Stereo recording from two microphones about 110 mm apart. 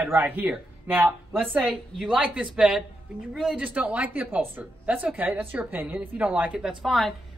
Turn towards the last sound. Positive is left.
turn(degrees=0)  # may be behind; listen again after turning